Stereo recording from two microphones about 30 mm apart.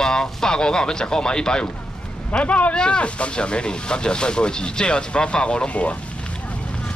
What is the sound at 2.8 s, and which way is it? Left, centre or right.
Speech, left.